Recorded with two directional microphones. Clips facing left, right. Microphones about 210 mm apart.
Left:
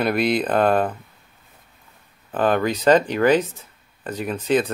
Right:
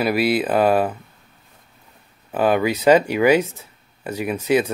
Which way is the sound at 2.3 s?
10° right (ahead or behind).